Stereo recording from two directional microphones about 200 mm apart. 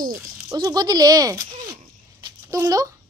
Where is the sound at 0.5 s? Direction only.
20° right (ahead or behind).